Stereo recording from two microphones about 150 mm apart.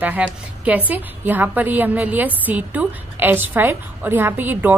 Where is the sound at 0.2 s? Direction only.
10° right (ahead or behind).